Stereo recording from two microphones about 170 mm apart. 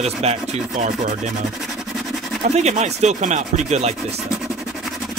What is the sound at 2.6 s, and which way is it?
Speech, 40° right (ahead or behind).